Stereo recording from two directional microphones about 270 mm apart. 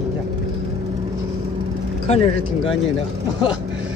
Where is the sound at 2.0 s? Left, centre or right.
Left.